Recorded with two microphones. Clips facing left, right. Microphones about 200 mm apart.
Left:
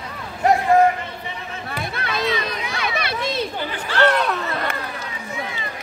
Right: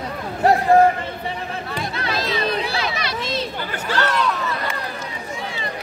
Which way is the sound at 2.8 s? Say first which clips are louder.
Left 1 dB; 55° left (ahead or behind).